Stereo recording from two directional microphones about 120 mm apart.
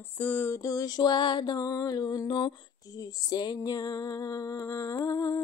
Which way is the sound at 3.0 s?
30° left (ahead or behind).